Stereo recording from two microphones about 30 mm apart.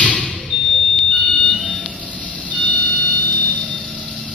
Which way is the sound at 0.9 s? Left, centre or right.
Left.